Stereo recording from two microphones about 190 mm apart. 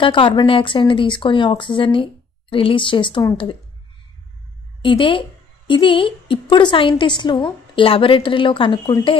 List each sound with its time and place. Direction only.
0.0 s a woman's voice: 25° left (ahead or behind)
4.8 s a woman's voice: 25° left (ahead or behind)